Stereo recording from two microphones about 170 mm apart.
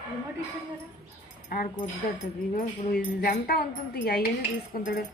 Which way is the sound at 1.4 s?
60° left (ahead or behind).